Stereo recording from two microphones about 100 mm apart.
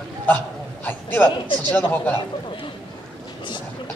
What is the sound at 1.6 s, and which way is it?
Speech, 15° left (ahead or behind).